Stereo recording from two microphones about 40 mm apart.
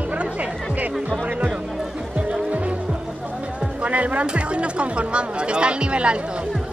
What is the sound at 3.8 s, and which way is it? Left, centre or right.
Speech, right.